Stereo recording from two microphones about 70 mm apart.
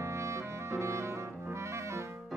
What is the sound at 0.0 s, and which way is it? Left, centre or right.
Clarinet, right.